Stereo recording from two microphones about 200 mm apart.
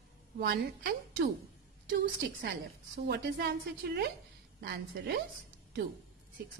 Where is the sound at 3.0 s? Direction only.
55° right (ahead or behind).